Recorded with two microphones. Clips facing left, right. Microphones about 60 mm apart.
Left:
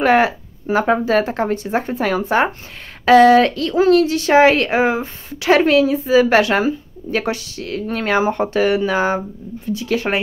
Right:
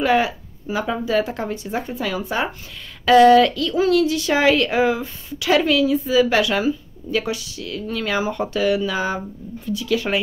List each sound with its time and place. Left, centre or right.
0.0 s speech: left